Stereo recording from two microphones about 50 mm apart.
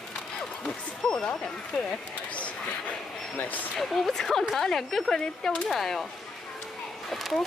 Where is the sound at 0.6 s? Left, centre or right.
Centre.